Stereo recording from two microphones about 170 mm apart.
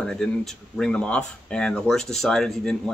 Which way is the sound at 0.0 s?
5° left (ahead or behind).